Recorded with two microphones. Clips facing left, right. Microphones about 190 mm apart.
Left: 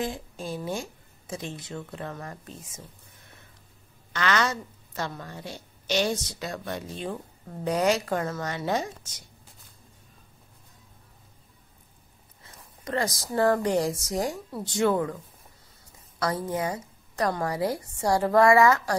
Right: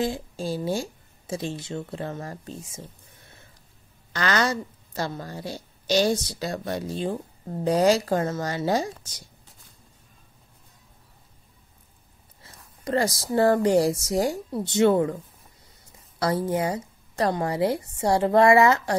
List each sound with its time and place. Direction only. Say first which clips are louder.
0.0 s a woman's voice: right 5 dB; 30° right (ahead or behind)
12.8 s a woman's voice: right 4 dB; 30° right (ahead or behind)
16.2 s a woman's voice: right 4 dB; 30° right (ahead or behind)